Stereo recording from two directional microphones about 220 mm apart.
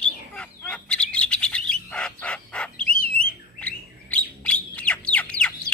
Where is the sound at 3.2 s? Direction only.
40° left (ahead or behind).